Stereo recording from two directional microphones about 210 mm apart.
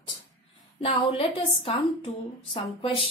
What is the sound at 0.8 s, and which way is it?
A woman's voice, 25° left (ahead or behind).